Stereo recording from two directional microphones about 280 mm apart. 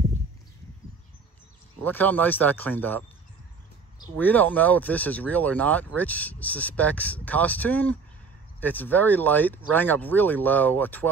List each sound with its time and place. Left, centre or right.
1.9 s speech: centre
4.0 s speech: centre